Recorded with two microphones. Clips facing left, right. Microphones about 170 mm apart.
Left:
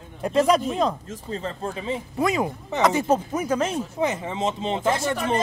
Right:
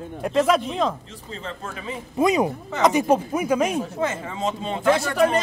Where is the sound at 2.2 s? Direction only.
20° right (ahead or behind).